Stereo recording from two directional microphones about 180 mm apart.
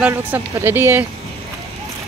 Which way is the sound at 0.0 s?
10° right (ahead or behind).